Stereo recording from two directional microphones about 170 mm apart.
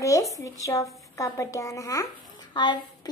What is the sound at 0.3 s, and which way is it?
A woman's voice, 20° left (ahead or behind).